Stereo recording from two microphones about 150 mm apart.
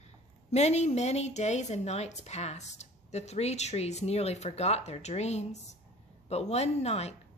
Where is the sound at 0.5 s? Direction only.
45° left (ahead or behind).